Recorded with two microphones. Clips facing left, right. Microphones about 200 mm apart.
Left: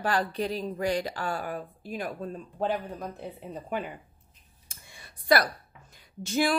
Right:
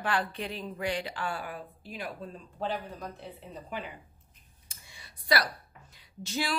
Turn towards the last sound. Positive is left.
turn(degrees=50)  # may be behind; listen again after turning